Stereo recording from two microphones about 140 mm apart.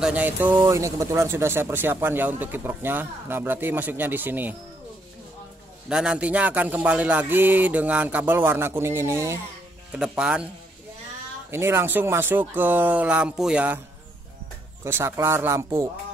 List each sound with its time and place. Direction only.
0.0 s speech: 10° right (ahead or behind)
5.9 s speech: 5° right (ahead or behind)
9.9 s speech: 5° right (ahead or behind)
11.5 s speech: 15° right (ahead or behind)
14.8 s speech: 15° right (ahead or behind)